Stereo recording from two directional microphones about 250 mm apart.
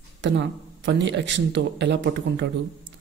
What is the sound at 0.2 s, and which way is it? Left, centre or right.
Speech, right.